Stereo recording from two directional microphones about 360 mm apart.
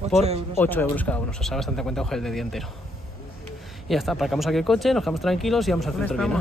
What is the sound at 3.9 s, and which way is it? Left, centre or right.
Mantra, centre.